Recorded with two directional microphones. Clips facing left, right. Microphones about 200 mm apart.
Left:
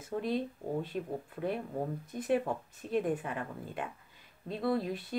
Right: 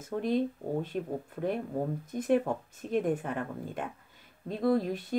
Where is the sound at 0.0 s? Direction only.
45° right (ahead or behind).